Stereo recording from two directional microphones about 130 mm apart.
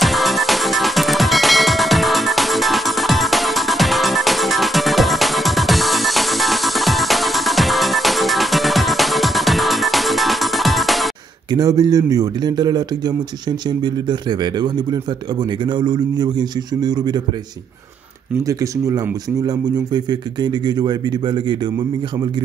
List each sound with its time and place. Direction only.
0.0 s music: centre (ahead or behind)
11.5 s speech: 30° right (ahead or behind)
18.5 s speech: 25° right (ahead or behind)